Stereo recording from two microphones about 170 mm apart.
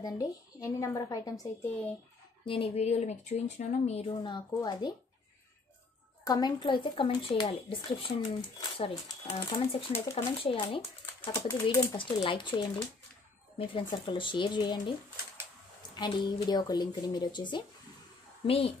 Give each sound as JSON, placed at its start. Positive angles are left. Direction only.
{"t": 0.0, "sound": "speech", "side_deg": 20}
{"t": 2.4, "sound": "speech", "side_deg": 30}
{"t": 4.2, "sound": "speech", "side_deg": 25}
{"t": 6.2, "sound": "speech", "side_deg": 25}
{"t": 11.1, "sound": "speech", "side_deg": 20}
{"t": 11.6, "sound": "speech", "side_deg": 30}
{"t": 14.0, "sound": "speech", "side_deg": 30}
{"t": 16.0, "sound": "speech", "side_deg": 25}